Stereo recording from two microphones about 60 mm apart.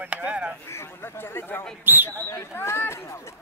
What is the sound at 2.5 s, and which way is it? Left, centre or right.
Speech, left.